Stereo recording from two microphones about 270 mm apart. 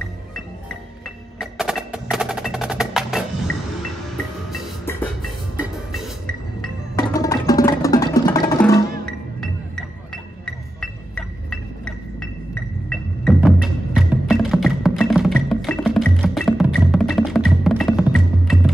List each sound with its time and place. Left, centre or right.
1.4 s percussion: centre
4.5 s music: centre
7.0 s music: centre
10.1 s music: centre